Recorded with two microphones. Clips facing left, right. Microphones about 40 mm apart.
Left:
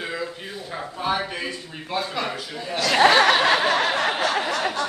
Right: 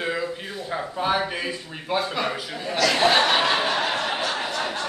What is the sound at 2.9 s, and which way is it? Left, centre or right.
Speech, left.